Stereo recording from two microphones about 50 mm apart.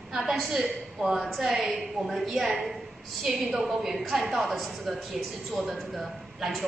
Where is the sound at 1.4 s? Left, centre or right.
Centre.